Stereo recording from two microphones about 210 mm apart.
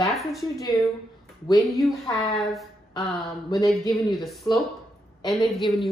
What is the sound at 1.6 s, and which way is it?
Speech, centre (ahead or behind).